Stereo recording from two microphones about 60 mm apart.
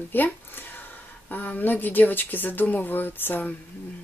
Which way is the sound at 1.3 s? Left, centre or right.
Left.